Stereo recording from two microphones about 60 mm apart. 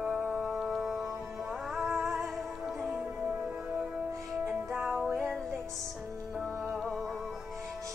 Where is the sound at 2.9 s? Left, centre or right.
Centre.